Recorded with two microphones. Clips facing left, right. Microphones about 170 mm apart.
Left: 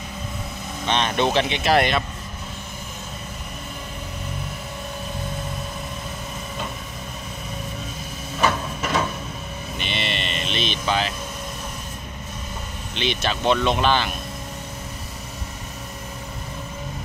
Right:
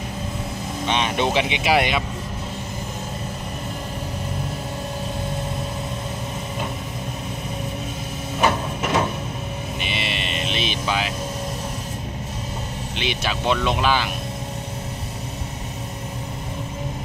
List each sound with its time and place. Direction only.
0.8 s speech: 10° right (ahead or behind)
8.4 s a sound: 15° right (ahead or behind)
9.8 s vehicle: 5° right (ahead or behind)
12.9 s speech: 10° right (ahead or behind)